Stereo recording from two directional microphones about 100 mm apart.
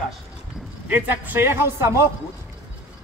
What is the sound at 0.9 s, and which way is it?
Speech, 20° right (ahead or behind).